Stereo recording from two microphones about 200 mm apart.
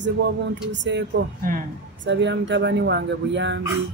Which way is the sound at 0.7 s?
60° right (ahead or behind).